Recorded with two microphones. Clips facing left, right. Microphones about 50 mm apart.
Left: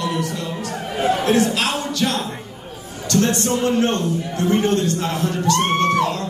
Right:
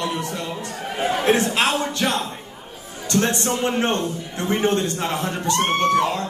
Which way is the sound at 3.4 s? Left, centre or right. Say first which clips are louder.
Left 3 dB; right.